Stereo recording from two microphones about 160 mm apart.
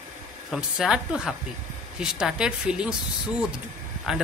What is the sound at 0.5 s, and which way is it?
Speech, 5° right (ahead or behind).